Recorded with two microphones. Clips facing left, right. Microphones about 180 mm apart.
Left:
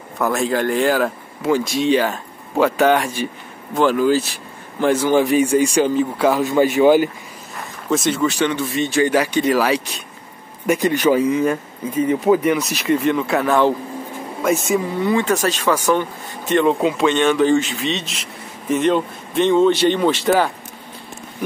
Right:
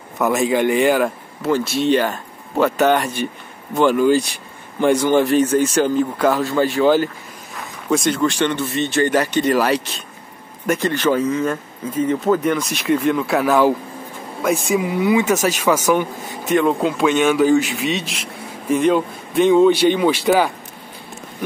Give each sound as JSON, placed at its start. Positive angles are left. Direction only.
{"t": 0.2, "sound": "speech", "side_deg": 0}
{"t": 1.9, "sound": "speech", "side_deg": 10}
{"t": 7.9, "sound": "speech", "side_deg": 5}
{"t": 10.8, "sound": "speech", "side_deg": 15}
{"t": 14.8, "sound": "speech", "side_deg": -10}